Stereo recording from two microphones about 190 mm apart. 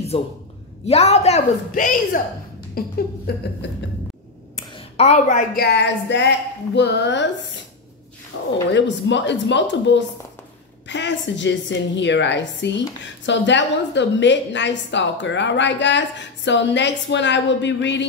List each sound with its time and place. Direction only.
0.1 s a woman's voice: 30° left (ahead or behind); by 3.3 s 50° left (ahead or behind)
4.7 s a woman's voice: 35° left (ahead or behind); by 7.2 s 65° left (ahead or behind)
8.7 s a woman's voice: 70° left (ahead or behind)